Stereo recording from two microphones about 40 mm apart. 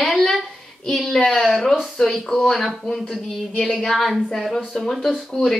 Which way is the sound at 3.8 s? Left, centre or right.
Centre.